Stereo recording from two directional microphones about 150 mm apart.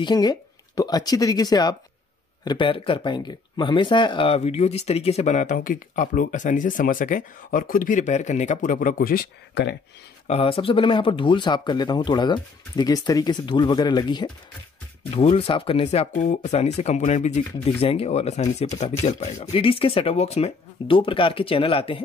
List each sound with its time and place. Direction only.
0.0 s speech: 25° left (ahead or behind)
4.4 s speech: 45° left (ahead or behind); by 9.7 s 90° left
10.2 s speech: 40° left (ahead or behind)
19.5 s speech: 40° left (ahead or behind)